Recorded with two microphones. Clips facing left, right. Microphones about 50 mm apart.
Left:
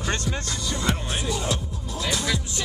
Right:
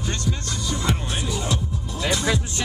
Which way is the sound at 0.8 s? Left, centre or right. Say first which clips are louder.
Left 1 dB; centre.